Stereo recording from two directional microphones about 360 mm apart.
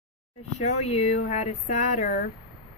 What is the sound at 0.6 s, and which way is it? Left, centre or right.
Speech, centre.